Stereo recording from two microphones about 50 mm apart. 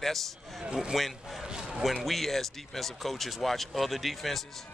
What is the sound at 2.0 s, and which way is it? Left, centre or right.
Speech, centre.